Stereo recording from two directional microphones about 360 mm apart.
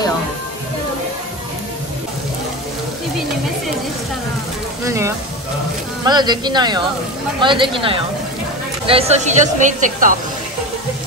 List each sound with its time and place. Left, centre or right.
4.8 s speech: centre